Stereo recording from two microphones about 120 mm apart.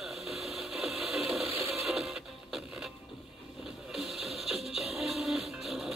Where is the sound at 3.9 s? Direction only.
Centre (ahead or behind).